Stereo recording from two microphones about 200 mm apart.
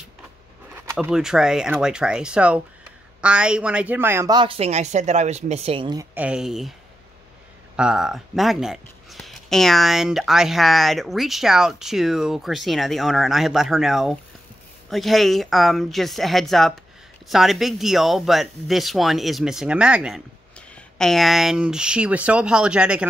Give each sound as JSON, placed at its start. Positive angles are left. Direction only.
{"t": 0.9, "sound": "a woman's voice", "side_deg": -5}
{"t": 6.1, "sound": "speech", "side_deg": -5}
{"t": 7.7, "sound": "speech", "side_deg": -5}